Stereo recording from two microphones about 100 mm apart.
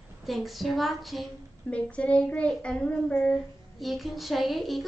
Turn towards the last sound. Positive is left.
turn(degrees=0)  # may be behind; listen again after turning